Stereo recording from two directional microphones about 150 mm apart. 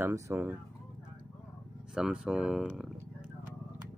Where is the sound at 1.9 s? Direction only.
5° right (ahead or behind).